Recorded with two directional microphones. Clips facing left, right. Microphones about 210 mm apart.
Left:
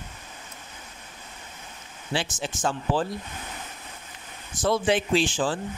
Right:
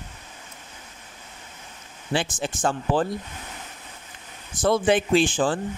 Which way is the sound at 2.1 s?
55° right (ahead or behind).